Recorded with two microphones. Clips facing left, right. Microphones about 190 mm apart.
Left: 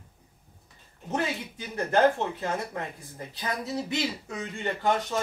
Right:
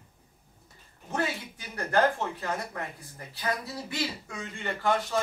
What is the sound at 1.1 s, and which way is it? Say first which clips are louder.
Speech: left 2 dB; 20° left (ahead or behind).